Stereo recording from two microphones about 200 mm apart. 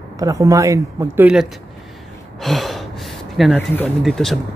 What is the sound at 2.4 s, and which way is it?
Gasp, centre (ahead or behind).